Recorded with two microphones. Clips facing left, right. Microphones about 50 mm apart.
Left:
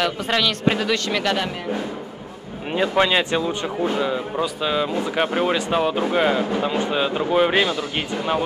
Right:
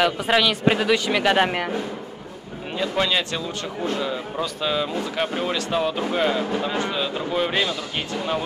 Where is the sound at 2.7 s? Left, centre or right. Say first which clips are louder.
Left 4 dB; left.